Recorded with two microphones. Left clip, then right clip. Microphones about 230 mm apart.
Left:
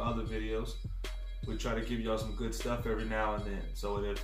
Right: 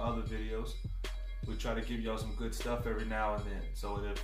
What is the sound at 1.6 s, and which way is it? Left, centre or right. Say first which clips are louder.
Speech: left 2 dB; centre.